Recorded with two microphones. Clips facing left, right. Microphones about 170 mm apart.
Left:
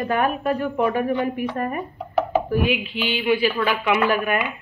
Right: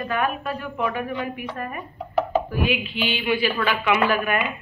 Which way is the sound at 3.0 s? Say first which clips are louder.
Left 4 dB; 40° left (ahead or behind).